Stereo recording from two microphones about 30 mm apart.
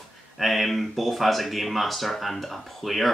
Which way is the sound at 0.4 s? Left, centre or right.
Centre.